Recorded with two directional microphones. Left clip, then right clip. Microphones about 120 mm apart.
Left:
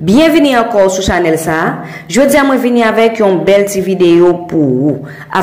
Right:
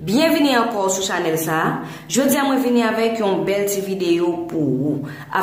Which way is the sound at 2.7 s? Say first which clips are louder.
Left 9 dB; 40° left (ahead or behind).